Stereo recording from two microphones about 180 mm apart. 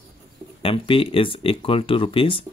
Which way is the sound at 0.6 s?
30° left (ahead or behind).